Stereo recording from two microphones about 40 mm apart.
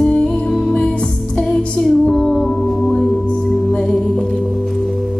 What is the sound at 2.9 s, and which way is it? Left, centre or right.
Singing bowl, left.